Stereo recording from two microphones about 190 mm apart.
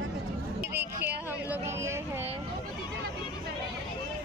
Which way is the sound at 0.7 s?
10° right (ahead or behind).